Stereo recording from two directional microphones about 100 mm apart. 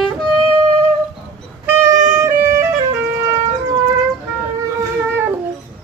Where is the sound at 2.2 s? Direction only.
30° right (ahead or behind).